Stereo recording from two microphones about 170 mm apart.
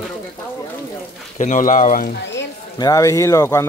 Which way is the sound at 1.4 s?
50° left (ahead or behind).